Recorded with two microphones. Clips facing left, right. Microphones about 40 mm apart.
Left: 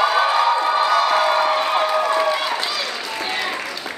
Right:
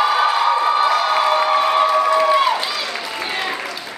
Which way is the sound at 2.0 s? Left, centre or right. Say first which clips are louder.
Right 4 dB; centre.